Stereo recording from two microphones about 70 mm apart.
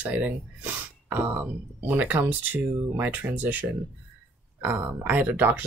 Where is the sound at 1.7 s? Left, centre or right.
Right.